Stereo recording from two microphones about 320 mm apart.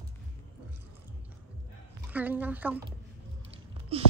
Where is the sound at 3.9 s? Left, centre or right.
Centre.